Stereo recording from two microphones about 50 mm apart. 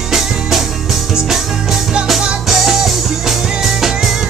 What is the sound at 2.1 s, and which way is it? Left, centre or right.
Music, centre.